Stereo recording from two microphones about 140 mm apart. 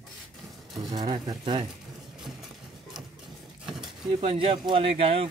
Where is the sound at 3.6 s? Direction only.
5° right (ahead or behind).